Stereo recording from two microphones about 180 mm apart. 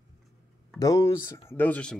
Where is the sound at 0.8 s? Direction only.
15° left (ahead or behind).